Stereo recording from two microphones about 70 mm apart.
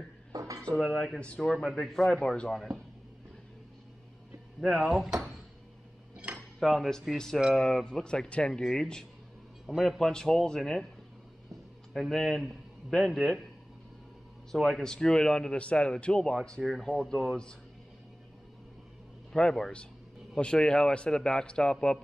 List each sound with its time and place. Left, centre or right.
0.3 s dishes: right
0.7 s a man's voice: centre
1.2 s speech: centre
1.5 s a man's voice: centre
4.6 s a man's voice: centre
6.1 s cutlery: centre
6.6 s a man's voice: centre
9.7 s speech: centre
11.9 s a man's voice: centre
14.5 s a man's voice: centre
19.3 s speech: centre